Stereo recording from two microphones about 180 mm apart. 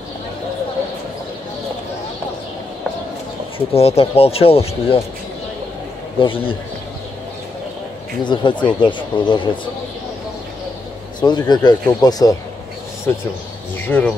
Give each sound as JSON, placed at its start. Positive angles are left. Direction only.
{"t": 3.5, "sound": "speech", "side_deg": 35}
{"t": 6.1, "sound": "speech", "side_deg": 30}
{"t": 8.2, "sound": "speech", "side_deg": 25}
{"t": 11.1, "sound": "speech", "side_deg": 25}
{"t": 13.1, "sound": "speech", "side_deg": 10}